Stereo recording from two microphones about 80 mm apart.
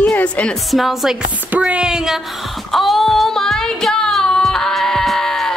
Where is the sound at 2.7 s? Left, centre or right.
Centre.